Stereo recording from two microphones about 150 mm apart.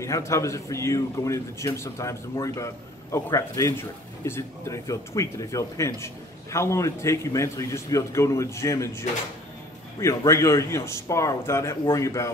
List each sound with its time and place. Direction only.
0.0 s a man's voice: 20° left (ahead or behind)